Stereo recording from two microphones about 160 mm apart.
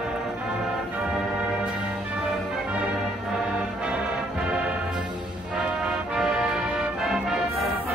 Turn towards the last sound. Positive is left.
turn(degrees=0)  # may be behind; listen again after turning